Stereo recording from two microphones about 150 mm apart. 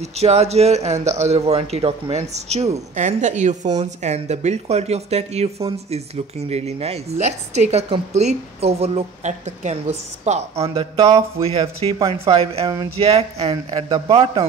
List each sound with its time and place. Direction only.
0.0 s a man's voice: 45° right (ahead or behind)
6.5 s a man's voice: 45° right (ahead or behind)
10.5 s speech: 20° right (ahead or behind)
10.8 s speech: 35° right (ahead or behind)
13.5 s speech: 25° right (ahead or behind)